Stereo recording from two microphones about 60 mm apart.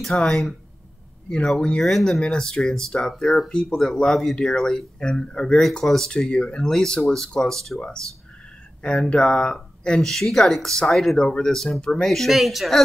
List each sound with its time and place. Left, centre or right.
0.2 s speech: centre
1.6 s speech: centre